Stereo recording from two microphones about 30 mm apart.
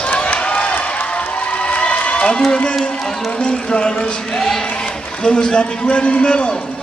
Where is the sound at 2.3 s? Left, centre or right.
Left.